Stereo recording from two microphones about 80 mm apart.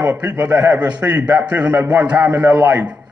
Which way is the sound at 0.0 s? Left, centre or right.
Right.